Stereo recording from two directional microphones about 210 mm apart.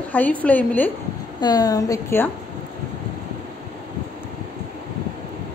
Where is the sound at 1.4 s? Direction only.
20° left (ahead or behind).